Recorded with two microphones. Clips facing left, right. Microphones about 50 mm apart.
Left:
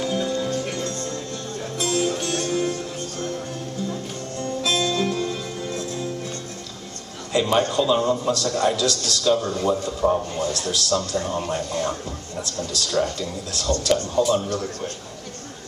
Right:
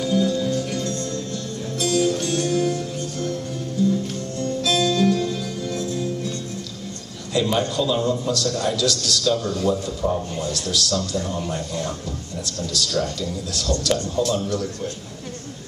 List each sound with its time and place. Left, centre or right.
0.0 s music: left
4.4 s music: left
7.3 s a man's voice: left
10.3 s a man's voice: left